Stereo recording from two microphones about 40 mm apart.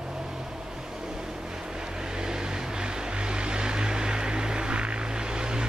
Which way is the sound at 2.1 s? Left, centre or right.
Centre.